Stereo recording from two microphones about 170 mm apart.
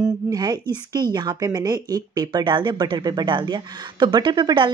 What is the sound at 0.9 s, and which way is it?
A woman's voice, 25° right (ahead or behind).